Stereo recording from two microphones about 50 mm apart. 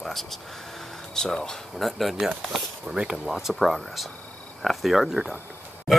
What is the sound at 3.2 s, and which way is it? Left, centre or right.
Speech, centre.